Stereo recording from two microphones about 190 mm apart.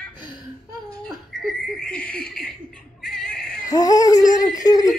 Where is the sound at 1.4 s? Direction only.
5° left (ahead or behind).